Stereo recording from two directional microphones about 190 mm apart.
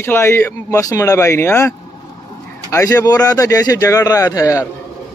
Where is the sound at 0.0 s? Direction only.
15° left (ahead or behind).